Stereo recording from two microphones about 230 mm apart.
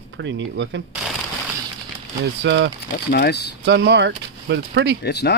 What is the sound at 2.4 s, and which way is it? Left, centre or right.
Speech, right.